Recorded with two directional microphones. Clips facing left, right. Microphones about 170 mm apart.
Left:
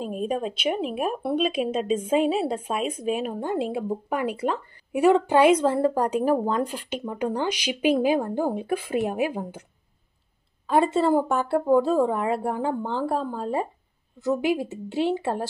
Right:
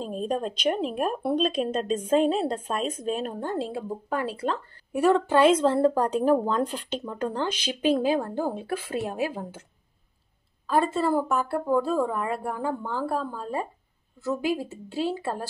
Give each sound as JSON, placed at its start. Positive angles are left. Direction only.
{"t": 0.0, "sound": "speech", "side_deg": 10}
{"t": 10.7, "sound": "speech", "side_deg": 20}